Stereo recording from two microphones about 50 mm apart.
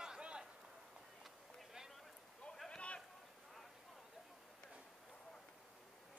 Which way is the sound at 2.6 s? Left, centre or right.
Centre.